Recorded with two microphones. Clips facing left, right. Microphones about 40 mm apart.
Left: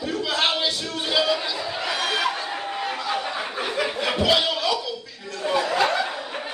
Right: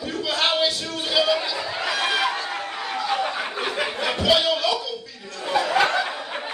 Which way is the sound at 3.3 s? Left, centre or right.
Centre.